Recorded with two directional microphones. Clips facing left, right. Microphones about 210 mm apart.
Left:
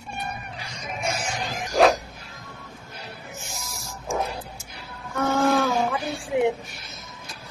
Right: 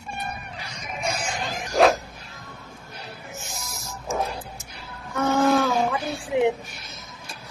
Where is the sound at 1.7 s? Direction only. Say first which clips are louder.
Even; centre (ahead or behind).